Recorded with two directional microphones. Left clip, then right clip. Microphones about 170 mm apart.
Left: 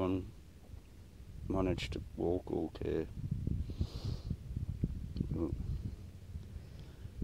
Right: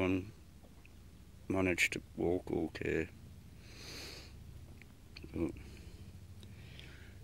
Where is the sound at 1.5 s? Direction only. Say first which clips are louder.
Right 4 dB; 10° right (ahead or behind).